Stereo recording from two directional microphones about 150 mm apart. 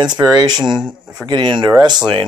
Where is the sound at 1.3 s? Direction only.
30° right (ahead or behind).